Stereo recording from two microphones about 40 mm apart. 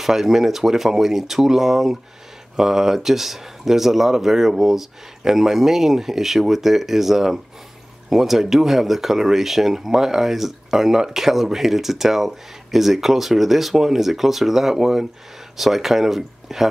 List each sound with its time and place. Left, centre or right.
0.0 s speech: centre